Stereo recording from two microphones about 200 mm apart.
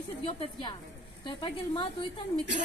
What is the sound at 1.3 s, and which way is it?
Speech, 25° left (ahead or behind).